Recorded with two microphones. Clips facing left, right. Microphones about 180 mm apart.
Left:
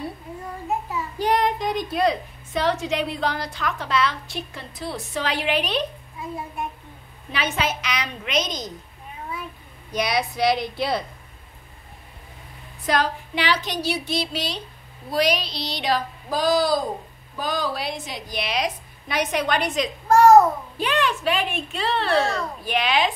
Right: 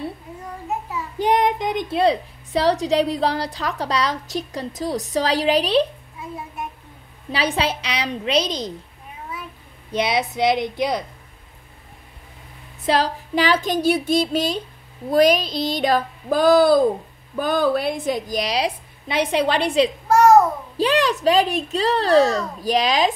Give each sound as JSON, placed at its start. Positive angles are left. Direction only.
{"t": 1.1, "sound": "a woman's voice", "side_deg": -20}
{"t": 7.2, "sound": "a woman's voice", "side_deg": -35}
{"t": 9.8, "sound": "a woman's voice", "side_deg": -25}
{"t": 12.8, "sound": "a woman's voice", "side_deg": -30}